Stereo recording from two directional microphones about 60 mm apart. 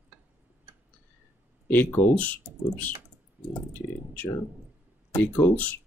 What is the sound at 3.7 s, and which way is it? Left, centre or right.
Speech, left.